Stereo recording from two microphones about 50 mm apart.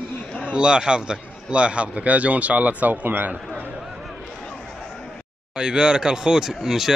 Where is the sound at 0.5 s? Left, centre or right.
Centre; by 3.3 s right.